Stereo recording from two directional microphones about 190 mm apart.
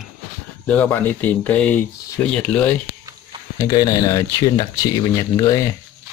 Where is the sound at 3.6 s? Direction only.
20° left (ahead or behind).